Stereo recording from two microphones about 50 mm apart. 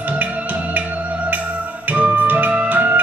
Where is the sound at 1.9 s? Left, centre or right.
Right.